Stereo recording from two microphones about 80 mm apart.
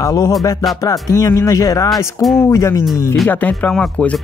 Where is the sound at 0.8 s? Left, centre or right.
Left.